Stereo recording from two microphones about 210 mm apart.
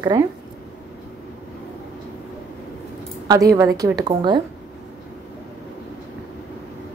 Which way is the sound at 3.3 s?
15° right (ahead or behind).